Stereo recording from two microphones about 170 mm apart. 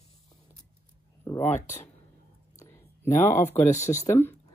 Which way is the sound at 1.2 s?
15° left (ahead or behind).